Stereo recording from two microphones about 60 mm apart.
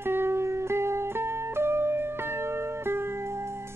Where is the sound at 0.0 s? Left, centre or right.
Right.